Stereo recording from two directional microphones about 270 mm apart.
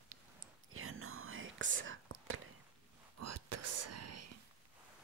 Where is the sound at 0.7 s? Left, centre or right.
Right.